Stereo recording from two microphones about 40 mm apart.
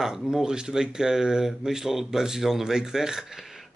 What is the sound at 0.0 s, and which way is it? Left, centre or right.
Speech, centre.